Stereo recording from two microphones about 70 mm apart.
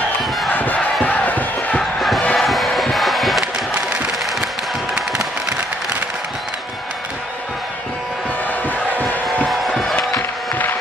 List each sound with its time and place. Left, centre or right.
0.5 s a sound: left
1.0 s crowd: left
1.8 s crowd: centre
2.3 s music: centre
8.6 s crowd: left
9.8 s music: centre